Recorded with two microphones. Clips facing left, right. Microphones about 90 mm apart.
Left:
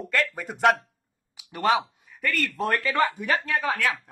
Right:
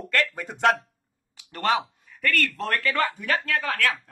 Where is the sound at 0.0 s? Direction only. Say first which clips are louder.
Even; 5° left (ahead or behind).